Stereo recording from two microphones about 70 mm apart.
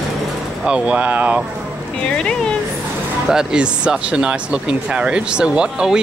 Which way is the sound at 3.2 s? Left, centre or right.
Centre.